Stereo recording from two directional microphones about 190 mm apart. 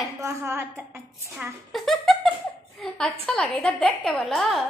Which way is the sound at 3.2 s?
5° left (ahead or behind).